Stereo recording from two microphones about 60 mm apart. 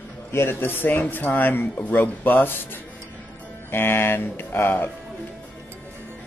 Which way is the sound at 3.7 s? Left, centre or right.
Left.